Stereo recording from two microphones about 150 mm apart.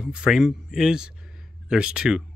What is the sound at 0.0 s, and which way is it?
Speech, 5° right (ahead or behind).